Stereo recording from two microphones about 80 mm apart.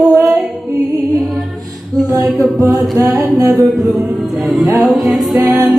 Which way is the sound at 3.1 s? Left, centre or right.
Right.